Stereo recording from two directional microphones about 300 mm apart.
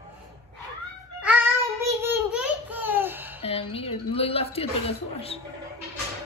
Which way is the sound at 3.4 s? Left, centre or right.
Centre.